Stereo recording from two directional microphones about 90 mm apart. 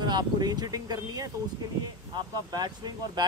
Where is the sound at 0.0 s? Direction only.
50° right (ahead or behind).